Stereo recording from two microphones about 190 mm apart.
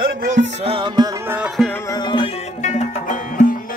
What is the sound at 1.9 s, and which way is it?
Music, 25° left (ahead or behind).